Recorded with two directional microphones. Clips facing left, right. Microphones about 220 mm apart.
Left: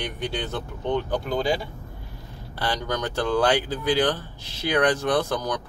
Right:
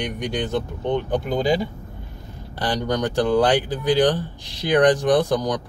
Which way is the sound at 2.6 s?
15° right (ahead or behind).